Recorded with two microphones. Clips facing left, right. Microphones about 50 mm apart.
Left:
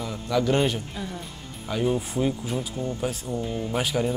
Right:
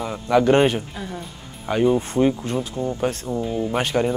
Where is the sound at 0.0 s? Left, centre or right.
Right.